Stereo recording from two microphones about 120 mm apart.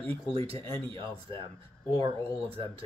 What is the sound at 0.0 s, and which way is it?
Speech, 50° right (ahead or behind).